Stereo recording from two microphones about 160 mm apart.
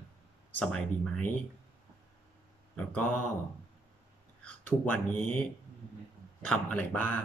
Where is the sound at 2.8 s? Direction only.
10° left (ahead or behind).